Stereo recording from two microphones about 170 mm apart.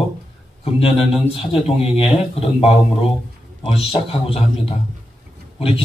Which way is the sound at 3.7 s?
35° left (ahead or behind).